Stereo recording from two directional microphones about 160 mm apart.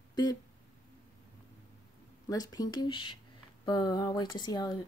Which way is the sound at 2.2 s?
25° left (ahead or behind).